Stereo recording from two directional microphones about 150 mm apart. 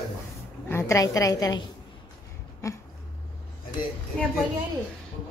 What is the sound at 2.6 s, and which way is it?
Speech, 20° left (ahead or behind).